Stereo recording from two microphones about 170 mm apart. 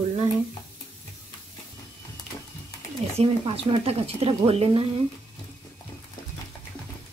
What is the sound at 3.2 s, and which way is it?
Speech, 30° right (ahead or behind).